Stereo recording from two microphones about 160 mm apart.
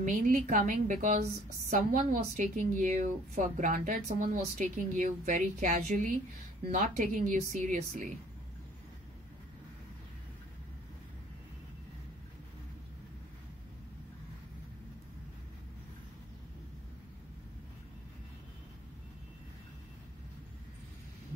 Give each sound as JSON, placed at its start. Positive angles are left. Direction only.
{"t": 0.0, "sound": "a woman's voice", "side_deg": -55}